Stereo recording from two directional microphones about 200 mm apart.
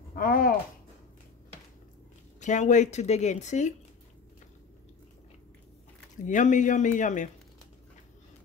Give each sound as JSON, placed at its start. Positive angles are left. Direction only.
{"t": 0.1, "sound": "speech", "side_deg": 45}
{"t": 2.4, "sound": "speech", "side_deg": 35}
{"t": 6.2, "sound": "speech", "side_deg": 40}